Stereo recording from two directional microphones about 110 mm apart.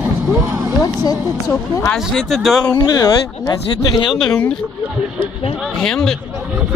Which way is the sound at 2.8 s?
35° left (ahead or behind).